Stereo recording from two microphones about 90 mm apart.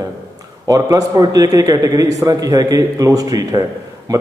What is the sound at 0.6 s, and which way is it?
A man's voice, 40° right (ahead or behind).